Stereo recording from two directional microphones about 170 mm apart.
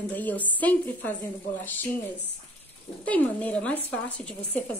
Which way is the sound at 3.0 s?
10° left (ahead or behind).